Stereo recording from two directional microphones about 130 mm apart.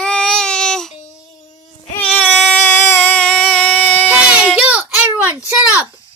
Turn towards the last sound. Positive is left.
turn(degrees=-15)  # may be behind; listen again after turning